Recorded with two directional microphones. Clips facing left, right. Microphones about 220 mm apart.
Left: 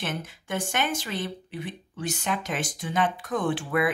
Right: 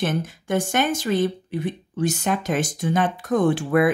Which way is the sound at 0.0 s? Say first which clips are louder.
Right 8 dB; 40° right (ahead or behind).